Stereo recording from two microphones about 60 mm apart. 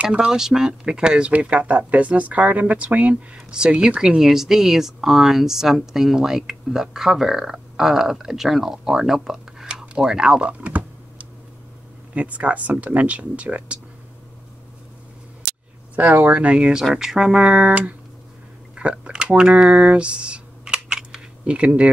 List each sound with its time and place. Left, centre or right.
0.0 s speech: centre
0.3 s speech: centre
10.7 s a sound: right
12.1 s speech: right
16.0 s speech: right
18.8 s a sound: centre